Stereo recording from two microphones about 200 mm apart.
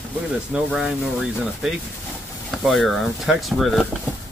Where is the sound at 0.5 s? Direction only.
5° right (ahead or behind).